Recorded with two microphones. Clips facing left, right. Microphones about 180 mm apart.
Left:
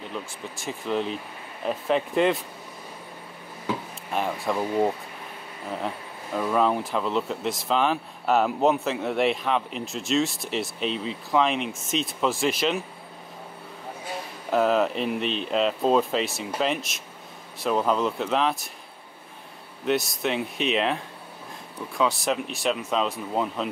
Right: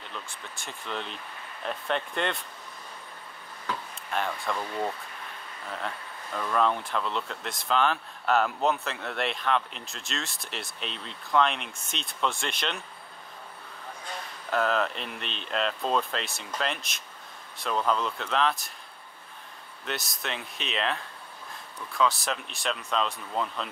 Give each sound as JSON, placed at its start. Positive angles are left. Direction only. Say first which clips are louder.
{"t": 0.1, "sound": "speech", "louder": "left 7 dB", "side_deg": 5}
{"t": 3.6, "sound": "a sound", "louder": "left 5 dB", "side_deg": 5}
{"t": 4.6, "sound": "speech", "louder": "left 8 dB", "side_deg": 20}
{"t": 5.7, "sound": "speech", "louder": "left 5 dB", "side_deg": 5}
{"t": 14.0, "sound": "speech", "louder": "left 5 dB", "side_deg": 5}
{"t": 19.8, "sound": "speech", "louder": "left 11 dB", "side_deg": 0}